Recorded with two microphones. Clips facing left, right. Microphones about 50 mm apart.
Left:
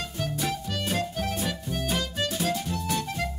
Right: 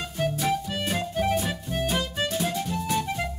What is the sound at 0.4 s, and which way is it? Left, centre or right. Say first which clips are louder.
Music: right 4 dB; centre.